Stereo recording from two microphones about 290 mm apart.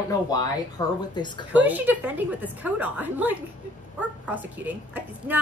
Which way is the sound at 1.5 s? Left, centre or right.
Centre.